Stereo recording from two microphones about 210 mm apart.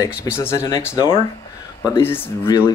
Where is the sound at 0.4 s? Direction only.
10° left (ahead or behind).